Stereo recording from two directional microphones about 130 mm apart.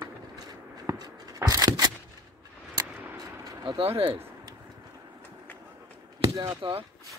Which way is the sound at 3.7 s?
45° right (ahead or behind).